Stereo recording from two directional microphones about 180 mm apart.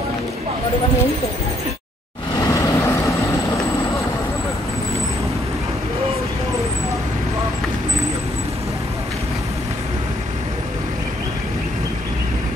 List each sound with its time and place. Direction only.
2.3 s vehicle: 20° left (ahead or behind)